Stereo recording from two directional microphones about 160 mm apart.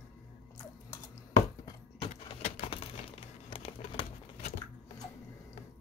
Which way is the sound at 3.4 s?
35° left (ahead or behind).